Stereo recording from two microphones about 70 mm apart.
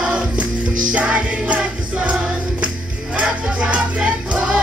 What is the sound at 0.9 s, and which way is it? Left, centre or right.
Music, centre.